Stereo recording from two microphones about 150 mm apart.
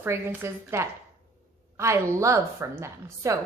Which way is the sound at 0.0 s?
15° right (ahead or behind).